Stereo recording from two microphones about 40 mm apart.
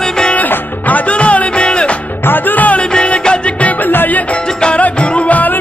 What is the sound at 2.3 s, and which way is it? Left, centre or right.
Music, left.